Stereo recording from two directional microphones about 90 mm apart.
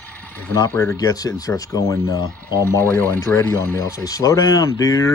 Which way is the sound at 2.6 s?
25° left (ahead or behind).